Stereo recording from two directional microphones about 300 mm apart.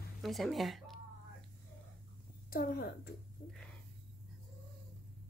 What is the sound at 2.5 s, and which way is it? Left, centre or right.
Speech, left.